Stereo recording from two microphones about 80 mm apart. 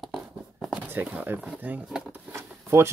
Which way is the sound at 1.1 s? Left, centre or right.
Centre.